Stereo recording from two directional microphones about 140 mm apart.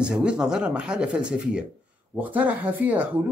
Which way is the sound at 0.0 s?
5° right (ahead or behind).